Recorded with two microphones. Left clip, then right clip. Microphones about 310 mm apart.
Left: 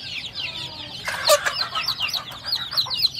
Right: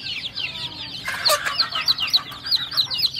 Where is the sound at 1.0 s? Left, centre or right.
Centre.